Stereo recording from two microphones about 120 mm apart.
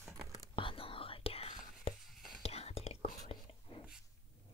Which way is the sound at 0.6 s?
45° left (ahead or behind).